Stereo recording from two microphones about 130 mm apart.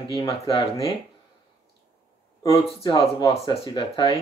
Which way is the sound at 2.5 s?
40° left (ahead or behind).